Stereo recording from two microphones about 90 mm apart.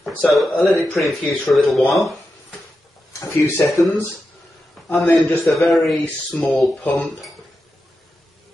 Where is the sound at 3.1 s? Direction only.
35° left (ahead or behind).